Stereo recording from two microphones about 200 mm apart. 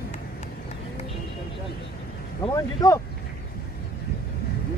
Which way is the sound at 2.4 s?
15° left (ahead or behind).